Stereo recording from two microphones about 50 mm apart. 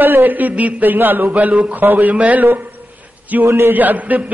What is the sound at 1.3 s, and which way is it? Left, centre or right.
A man's voice, right.